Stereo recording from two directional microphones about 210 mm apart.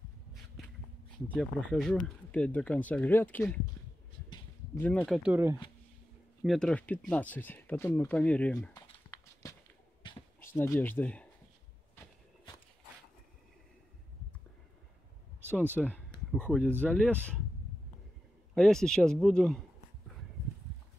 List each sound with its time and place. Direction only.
1.3 s speech: 5° left (ahead or behind)
4.7 s speech: 5° left (ahead or behind); by 5.6 s 10° right (ahead or behind)
6.4 s speech: centre (ahead or behind)
8.7 s clip-clop: 15° left (ahead or behind)
10.4 s speech: 10° left (ahead or behind)
15.8 s speech: 5° left (ahead or behind)
18.5 s speech: centre (ahead or behind)